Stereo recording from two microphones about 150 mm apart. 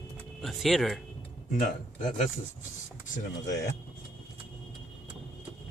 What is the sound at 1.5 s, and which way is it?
Speech, 60° left (ahead or behind).